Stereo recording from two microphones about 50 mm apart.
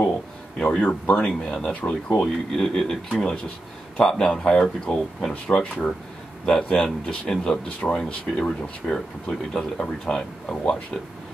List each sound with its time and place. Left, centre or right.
0.6 s speech: left
1.2 s speech: centre
1.7 s speech: left
2.5 s speech: centre